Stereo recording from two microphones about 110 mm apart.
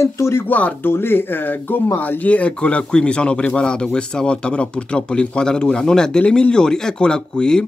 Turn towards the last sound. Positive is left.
turn(degrees=5)  # may be behind; listen again after turning